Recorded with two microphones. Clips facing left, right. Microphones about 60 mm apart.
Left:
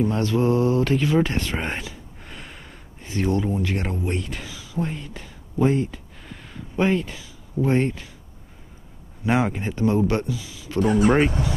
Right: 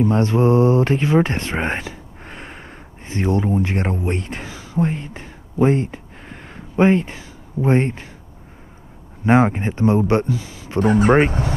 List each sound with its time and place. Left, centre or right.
0.0 s speech: right
9.2 s speech: right
10.2 s speech: right